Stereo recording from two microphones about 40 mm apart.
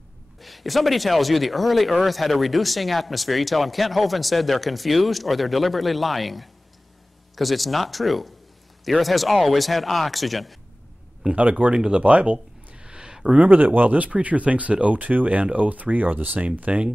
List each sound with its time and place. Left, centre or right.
0.4 s speech: centre
11.3 s speech: right
13.7 s speech: right